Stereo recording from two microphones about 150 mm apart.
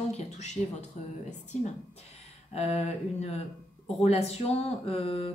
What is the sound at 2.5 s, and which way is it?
Speech, 45° left (ahead or behind).